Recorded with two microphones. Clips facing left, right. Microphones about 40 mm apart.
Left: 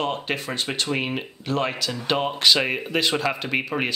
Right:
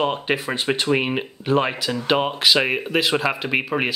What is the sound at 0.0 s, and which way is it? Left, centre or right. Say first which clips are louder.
Speech: right 4 dB; centre.